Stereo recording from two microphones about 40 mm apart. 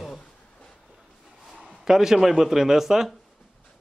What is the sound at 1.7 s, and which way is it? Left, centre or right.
Speech, centre.